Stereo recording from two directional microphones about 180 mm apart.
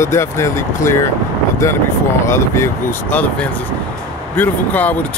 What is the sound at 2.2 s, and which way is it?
Speech, 15° left (ahead or behind).